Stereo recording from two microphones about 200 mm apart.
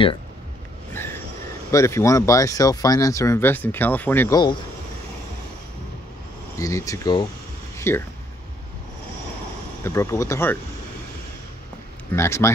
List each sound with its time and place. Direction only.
1.7 s speech: 15° left (ahead or behind)
6.6 s speech: 15° left (ahead or behind)
7.7 s a sound: 15° left (ahead or behind)
9.8 s speech: 15° left (ahead or behind)
12.1 s speech: 15° left (ahead or behind)